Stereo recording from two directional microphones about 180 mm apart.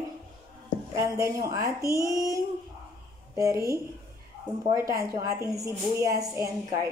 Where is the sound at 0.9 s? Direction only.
15° right (ahead or behind).